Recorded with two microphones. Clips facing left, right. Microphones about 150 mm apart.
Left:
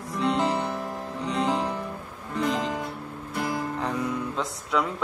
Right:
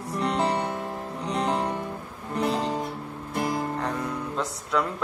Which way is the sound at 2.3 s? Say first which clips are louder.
Right 1 dB; 40° right (ahead or behind).